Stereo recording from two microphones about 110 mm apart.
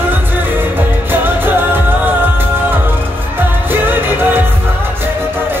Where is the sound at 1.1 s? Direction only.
20° right (ahead or behind).